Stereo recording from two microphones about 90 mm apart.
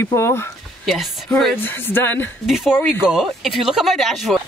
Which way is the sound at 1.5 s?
25° left (ahead or behind).